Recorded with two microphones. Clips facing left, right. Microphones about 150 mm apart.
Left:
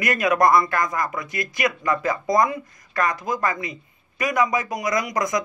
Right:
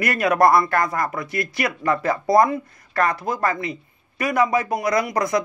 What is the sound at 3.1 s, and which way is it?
Speech, 65° right (ahead or behind).